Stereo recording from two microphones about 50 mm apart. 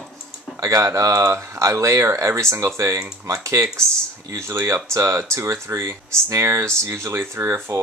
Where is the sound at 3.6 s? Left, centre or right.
Right.